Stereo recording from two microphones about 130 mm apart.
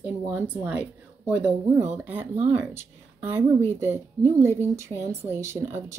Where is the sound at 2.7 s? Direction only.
20° right (ahead or behind).